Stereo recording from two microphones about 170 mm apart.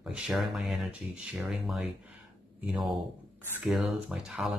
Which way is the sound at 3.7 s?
5° right (ahead or behind).